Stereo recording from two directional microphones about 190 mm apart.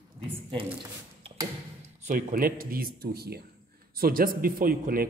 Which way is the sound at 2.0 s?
45° right (ahead or behind).